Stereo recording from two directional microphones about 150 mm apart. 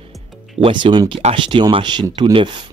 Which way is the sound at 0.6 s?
35° right (ahead or behind).